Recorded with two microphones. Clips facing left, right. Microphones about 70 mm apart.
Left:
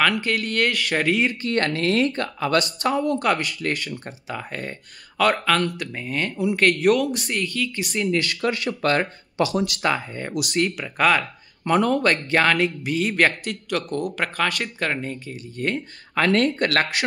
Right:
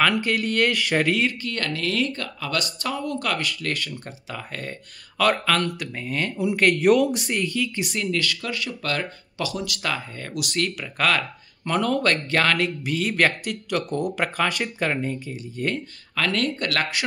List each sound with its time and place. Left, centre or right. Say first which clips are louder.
0.0 s speech: even; centre
1.4 s speech: left 5 dB; left; by 7.1 s centre
7.1 s speech: right 1 dB; centre
8.1 s speech: left 3 dB; left
8.4 s speech: left 6 dB; left; by 15.7 s centre
16.2 s speech: left 5 dB; left